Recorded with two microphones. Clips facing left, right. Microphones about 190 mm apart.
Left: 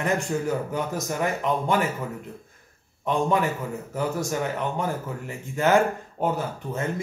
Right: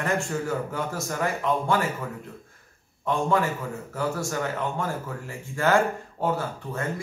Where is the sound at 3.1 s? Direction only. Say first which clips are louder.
Left 1 dB; 20° left (ahead or behind).